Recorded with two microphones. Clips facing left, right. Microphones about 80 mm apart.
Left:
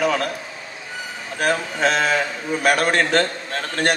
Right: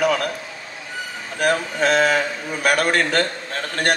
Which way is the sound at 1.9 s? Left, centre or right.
Right.